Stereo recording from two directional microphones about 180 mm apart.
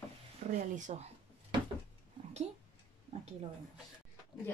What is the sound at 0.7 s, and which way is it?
Speech, 40° right (ahead or behind).